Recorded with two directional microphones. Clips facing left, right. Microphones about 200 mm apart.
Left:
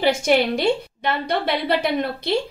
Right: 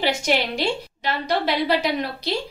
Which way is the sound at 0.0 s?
55° left (ahead or behind).